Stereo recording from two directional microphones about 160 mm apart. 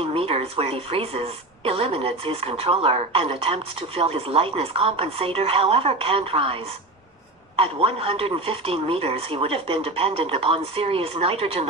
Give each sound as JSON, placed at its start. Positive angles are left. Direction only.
{"t": 0.1, "sound": "speech", "side_deg": -35}